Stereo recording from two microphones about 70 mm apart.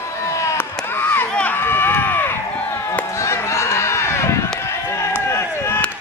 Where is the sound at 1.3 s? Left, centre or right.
Centre.